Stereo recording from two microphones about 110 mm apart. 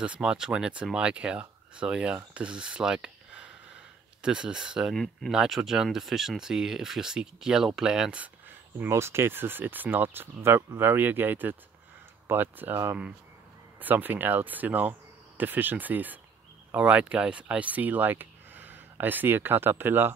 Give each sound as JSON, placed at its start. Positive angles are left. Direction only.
{"t": 0.0, "sound": "speech", "side_deg": -10}
{"t": 8.7, "sound": "speech", "side_deg": -20}